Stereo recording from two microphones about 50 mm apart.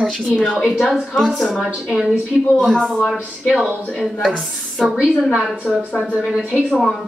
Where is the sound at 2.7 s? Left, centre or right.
Centre.